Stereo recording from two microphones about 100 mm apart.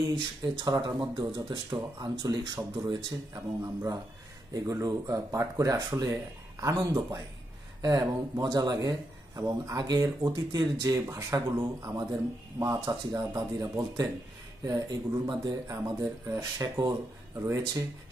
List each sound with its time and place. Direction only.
0.0 s speech: 40° right (ahead or behind)
3.6 s speech: 35° right (ahead or behind)